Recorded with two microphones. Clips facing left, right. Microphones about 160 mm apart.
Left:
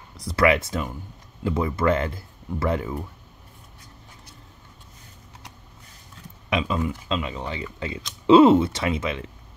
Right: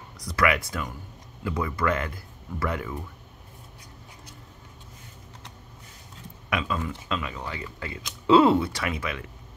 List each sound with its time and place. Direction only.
0.2 s speech: 25° left (ahead or behind)
6.5 s speech: 20° left (ahead or behind)